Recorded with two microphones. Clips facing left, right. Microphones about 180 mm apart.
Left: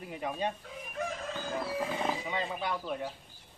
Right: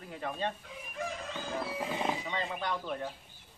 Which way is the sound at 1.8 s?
5° right (ahead or behind).